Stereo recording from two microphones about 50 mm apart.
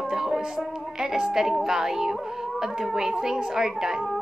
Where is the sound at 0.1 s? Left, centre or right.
Centre.